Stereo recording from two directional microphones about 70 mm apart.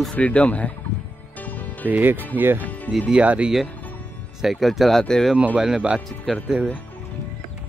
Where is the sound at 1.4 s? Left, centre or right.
Left.